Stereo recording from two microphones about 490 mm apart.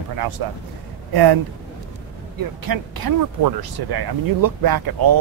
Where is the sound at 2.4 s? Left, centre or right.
Right.